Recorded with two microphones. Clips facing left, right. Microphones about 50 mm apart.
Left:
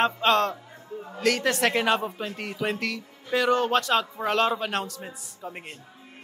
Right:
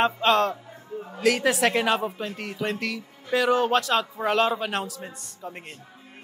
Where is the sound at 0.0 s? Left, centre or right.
Centre.